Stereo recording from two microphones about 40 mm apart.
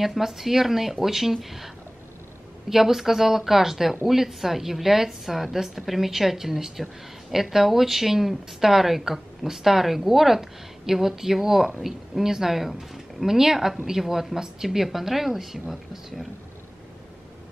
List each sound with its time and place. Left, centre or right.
0.0 s a woman's voice: centre
2.7 s a woman's voice: centre